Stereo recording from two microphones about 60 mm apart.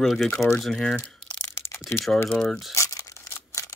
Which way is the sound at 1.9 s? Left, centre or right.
Centre.